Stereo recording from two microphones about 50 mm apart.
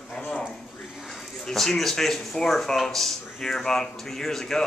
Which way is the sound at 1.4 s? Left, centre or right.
Centre.